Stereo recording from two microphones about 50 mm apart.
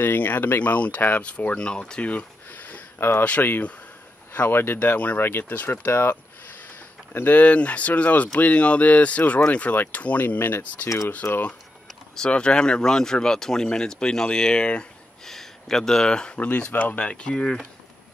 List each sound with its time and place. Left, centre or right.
0.0 s speech: left; by 2.0 s centre
2.0 s a sound: left
3.0 s speech: left
4.3 s speech: left
7.2 s speech: left
11.2 s speech: left
12.3 s speech: centre
15.2 s speech: centre
16.3 s speech: left